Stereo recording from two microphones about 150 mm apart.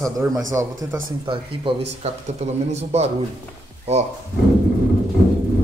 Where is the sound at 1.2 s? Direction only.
40° right (ahead or behind).